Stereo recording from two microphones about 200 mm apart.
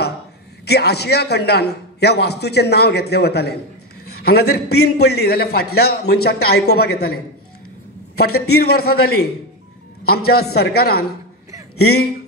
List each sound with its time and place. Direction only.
0.7 s a man's voice: 55° left (ahead or behind)
8.5 s a man's voice: 50° left (ahead or behind)